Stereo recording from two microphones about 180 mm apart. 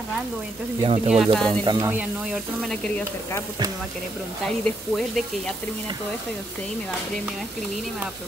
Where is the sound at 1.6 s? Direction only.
25° right (ahead or behind).